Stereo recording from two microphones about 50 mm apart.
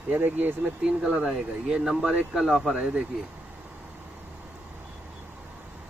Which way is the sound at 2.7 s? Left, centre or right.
Centre.